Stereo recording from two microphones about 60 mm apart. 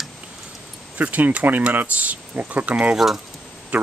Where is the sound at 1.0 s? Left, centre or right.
Right.